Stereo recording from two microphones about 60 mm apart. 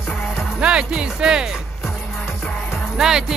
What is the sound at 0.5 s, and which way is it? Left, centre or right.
Speech, centre.